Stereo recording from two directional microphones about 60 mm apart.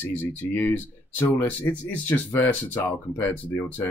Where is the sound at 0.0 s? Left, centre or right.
Left.